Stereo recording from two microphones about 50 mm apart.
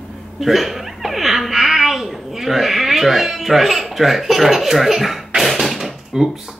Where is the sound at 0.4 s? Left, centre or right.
Centre.